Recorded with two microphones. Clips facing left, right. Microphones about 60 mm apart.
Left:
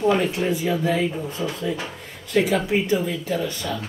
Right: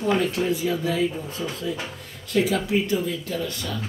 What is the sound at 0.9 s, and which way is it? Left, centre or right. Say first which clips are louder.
Speech: left 2 dB; left.